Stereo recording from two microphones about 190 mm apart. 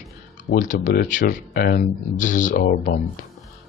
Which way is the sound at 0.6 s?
40° left (ahead or behind).